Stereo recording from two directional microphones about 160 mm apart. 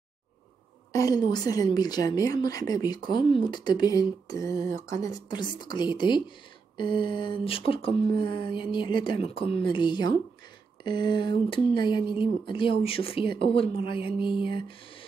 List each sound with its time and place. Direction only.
0.9 s a woman's voice: 25° left (ahead or behind)